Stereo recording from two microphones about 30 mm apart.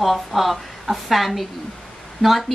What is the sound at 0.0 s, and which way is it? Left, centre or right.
Speech, centre.